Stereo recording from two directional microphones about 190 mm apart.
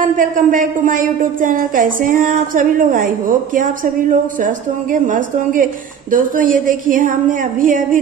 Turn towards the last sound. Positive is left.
turn(degrees=-45)  # may be behind; listen again after turning